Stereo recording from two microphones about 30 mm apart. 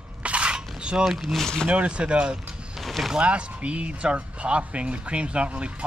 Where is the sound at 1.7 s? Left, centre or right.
Right.